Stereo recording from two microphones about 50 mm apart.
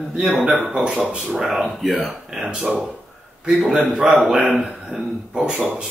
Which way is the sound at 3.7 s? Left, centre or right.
Centre.